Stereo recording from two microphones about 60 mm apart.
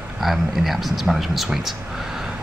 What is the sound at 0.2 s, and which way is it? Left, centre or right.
Speech, centre.